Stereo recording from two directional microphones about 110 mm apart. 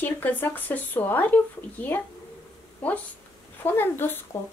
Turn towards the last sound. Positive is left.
turn(degrees=20)  # may be behind; listen again after turning